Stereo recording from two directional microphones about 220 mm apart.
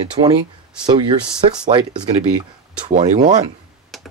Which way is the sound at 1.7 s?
20° right (ahead or behind).